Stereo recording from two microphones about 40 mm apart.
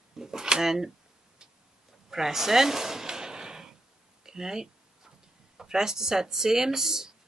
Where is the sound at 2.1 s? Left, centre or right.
Centre.